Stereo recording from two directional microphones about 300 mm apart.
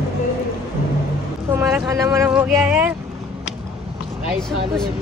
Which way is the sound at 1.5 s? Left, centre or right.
Centre.